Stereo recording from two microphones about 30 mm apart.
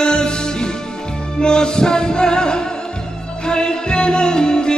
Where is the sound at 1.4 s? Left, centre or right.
Left.